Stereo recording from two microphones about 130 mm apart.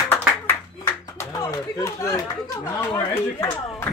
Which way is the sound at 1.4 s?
25° left (ahead or behind).